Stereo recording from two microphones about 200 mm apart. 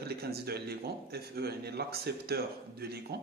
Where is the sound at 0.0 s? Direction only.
50° right (ahead or behind).